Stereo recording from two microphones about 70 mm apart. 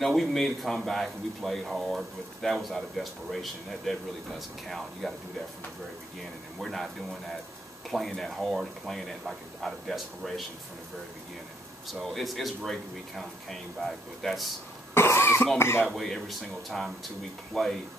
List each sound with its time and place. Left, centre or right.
0.0 s speech: centre
6.6 s speech: centre
11.9 s speech: centre
15.0 s cough: left
15.6 s speech: left
15.9 s speech: centre